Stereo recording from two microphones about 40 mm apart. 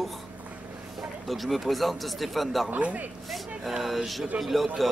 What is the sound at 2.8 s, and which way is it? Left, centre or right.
Speech, right.